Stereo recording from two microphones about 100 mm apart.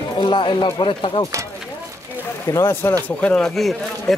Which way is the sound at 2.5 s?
30° left (ahead or behind).